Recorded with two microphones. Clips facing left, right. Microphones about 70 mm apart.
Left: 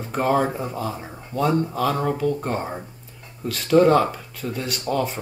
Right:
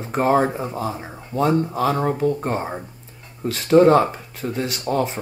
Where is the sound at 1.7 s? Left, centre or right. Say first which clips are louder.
Right 2 dB; right.